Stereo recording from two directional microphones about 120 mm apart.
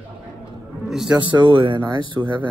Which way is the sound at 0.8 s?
5° right (ahead or behind).